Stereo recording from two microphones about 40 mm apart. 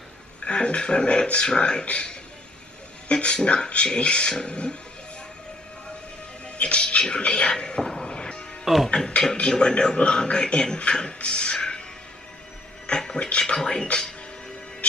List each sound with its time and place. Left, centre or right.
0.5 s a man's voice: left
6.4 s a man's voice: left
8.1 s music: left
8.7 s speech: centre
9.4 s a man's voice: left
12.8 s music: left
13.6 s a man's voice: centre